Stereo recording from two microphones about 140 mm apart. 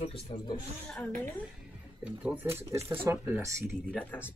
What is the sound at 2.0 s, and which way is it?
Speech, 10° right (ahead or behind).